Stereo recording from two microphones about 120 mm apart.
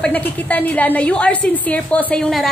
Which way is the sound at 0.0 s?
15° left (ahead or behind).